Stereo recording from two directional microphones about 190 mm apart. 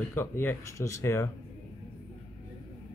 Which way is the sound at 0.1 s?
10° left (ahead or behind).